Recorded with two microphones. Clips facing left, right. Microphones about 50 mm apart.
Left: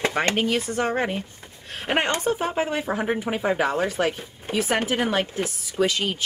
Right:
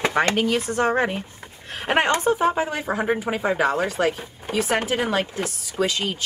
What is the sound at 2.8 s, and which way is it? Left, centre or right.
A woman's voice, centre.